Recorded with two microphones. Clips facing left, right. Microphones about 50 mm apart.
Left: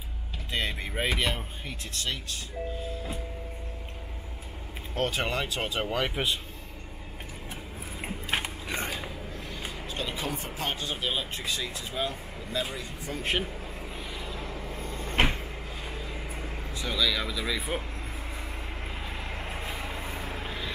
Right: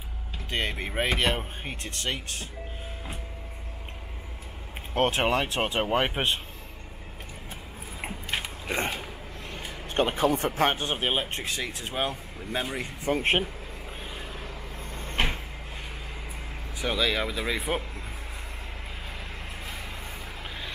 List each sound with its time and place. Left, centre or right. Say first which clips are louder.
0.6 s speech: right 2 dB; right
4.9 s speech: right 5 dB; right
8.6 s creak: right 3 dB; right
9.6 s speech: right 9 dB; right
14.1 s vehicle: left 1 dB; right
16.8 s speech: right 2 dB; right